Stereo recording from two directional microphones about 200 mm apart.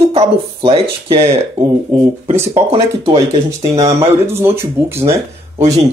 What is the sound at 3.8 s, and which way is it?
Speech, 15° right (ahead or behind).